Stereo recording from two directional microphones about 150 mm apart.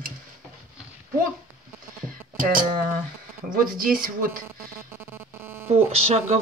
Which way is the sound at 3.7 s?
70° right (ahead or behind).